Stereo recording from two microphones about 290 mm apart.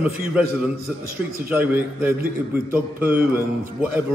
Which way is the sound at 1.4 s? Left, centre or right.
Centre.